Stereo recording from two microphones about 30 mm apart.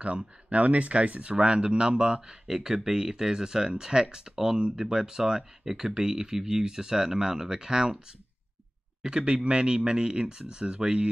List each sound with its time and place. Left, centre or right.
0.0 s speech: right
2.4 s speech: centre
9.0 s speech: right